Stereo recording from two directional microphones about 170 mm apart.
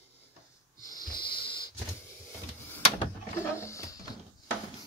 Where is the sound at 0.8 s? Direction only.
25° left (ahead or behind).